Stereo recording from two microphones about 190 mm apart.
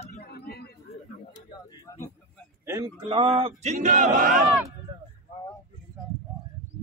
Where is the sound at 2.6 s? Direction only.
15° right (ahead or behind).